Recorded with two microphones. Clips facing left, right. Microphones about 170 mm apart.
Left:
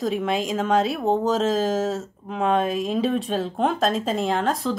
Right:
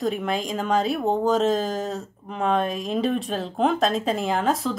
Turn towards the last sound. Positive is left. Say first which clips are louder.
# even
turn(degrees=0)  # may be behind; listen again after turning